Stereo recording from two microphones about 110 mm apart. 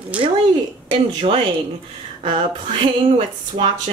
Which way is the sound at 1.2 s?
80° right.